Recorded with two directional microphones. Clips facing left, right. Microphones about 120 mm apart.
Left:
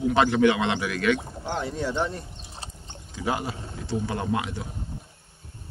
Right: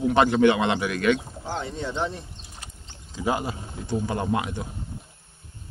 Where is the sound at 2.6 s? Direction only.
30° left (ahead or behind).